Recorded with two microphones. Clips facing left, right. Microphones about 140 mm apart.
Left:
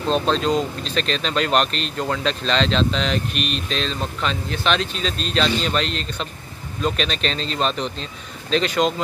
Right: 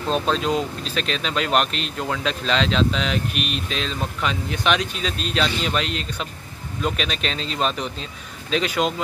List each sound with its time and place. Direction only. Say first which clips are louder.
0.1 s speech: left 2 dB; 5° right (ahead or behind)